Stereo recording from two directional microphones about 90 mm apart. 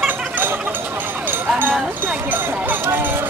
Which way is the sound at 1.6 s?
20° right (ahead or behind).